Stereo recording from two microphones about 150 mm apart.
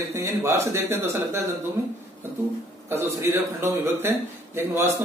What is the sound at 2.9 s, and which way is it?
A man's voice, 20° right (ahead or behind).